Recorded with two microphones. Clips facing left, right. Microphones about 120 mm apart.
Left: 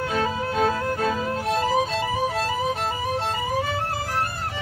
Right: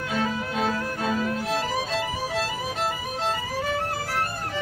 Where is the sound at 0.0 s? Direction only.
30° left (ahead or behind).